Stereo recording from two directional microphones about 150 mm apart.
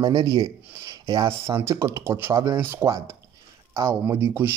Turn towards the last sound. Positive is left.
turn(degrees=-15)  # may be behind; listen again after turning